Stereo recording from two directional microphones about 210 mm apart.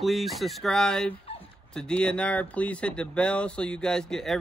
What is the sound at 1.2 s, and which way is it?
Dog, 25° left (ahead or behind).